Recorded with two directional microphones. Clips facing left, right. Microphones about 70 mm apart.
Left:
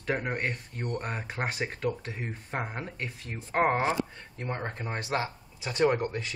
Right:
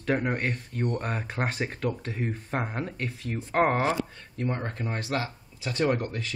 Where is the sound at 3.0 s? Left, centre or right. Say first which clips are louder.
Right 5 dB; left.